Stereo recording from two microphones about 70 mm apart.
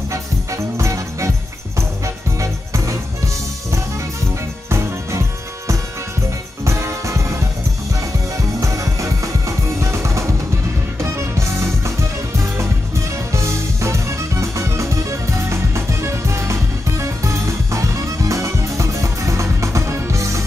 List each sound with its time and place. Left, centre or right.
0.1 s music: right
2.4 s music: right
4.6 s music: right
6.6 s music: right
8.5 s music: right
13.3 s music: right